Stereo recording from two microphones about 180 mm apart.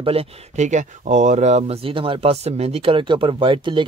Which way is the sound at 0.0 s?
30° right (ahead or behind).